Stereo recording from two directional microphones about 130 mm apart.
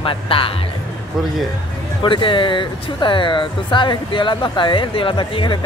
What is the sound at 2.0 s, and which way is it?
Speech, 40° left (ahead or behind).